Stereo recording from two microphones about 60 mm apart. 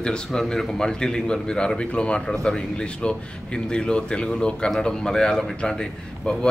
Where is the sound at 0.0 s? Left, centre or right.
Centre.